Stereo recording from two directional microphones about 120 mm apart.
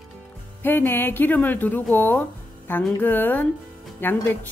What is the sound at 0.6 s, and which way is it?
Speech, 15° left (ahead or behind).